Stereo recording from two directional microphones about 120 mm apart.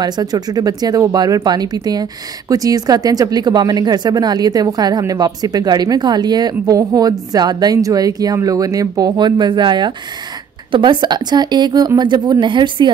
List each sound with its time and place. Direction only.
0.0 s speech: 35° right (ahead or behind)